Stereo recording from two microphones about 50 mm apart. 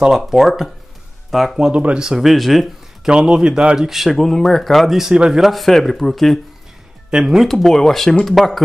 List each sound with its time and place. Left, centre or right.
0.2 s speech: centre
1.7 s speech: right
2.0 s speech: centre
3.1 s speech: centre
5.1 s speech: centre
5.4 s speech: centre
7.1 s speech: centre
7.4 s speech: centre